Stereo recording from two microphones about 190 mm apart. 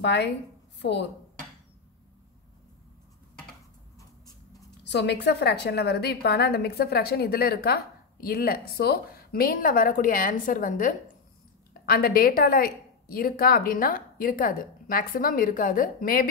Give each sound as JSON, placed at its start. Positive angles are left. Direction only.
{"t": 0.0, "sound": "a woman's voice", "side_deg": 65}
{"t": 4.8, "sound": "a woman's voice", "side_deg": 65}